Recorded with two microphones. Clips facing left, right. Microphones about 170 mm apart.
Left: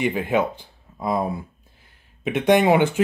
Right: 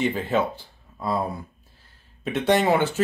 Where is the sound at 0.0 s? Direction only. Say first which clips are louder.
Left 2 dB; 10° left (ahead or behind).